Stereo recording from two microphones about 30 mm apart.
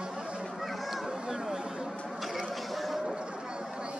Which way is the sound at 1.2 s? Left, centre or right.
Right.